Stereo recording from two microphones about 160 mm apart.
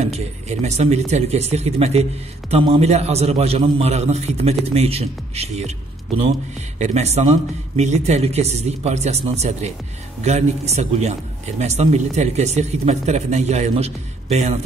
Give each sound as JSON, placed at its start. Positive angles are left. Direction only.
{"t": 0.0, "sound": "a man's voice", "side_deg": -45}